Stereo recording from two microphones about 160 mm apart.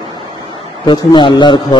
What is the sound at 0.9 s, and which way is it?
Speech, 30° left (ahead or behind).